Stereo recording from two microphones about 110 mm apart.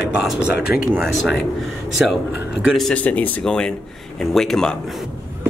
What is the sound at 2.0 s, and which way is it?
Speech, 5° right (ahead or behind).